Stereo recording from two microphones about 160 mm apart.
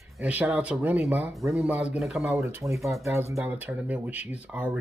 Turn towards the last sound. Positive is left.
turn(degrees=-10)  # may be behind; listen again after turning